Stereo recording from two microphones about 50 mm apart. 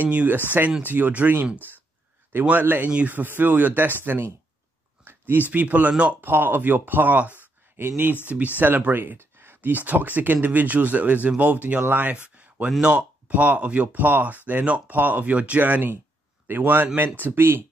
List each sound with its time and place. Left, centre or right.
0.0 s speech: right
2.6 s speech: right
5.0 s a sound: right
5.5 s speech: right
6.2 s speech: right
7.7 s speech: right
8.5 s speech: right
12.1 s a man's voice: right